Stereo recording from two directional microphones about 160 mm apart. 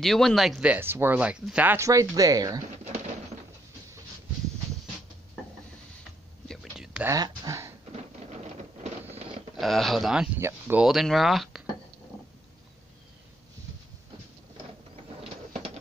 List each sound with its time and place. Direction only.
0.0 s speech: centre (ahead or behind); by 2.6 s 25° right (ahead or behind)
2.8 s pigeon: 40° right (ahead or behind)
6.5 s a sound: centre (ahead or behind)
7.1 s speech: 20° right (ahead or behind)
9.6 s speech: centre (ahead or behind)
10.9 s speech: centre (ahead or behind)
15.2 s a sound: 40° right (ahead or behind)